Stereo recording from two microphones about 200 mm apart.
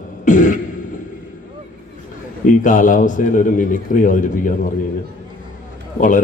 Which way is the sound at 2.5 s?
40° left (ahead or behind).